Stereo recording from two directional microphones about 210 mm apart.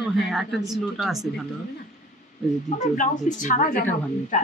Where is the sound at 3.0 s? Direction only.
35° left (ahead or behind).